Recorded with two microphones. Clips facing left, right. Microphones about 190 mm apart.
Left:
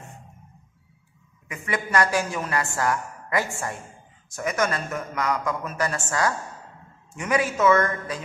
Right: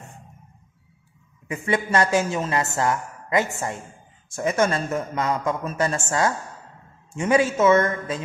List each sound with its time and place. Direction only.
1.5 s a woman's voice: 25° right (ahead or behind)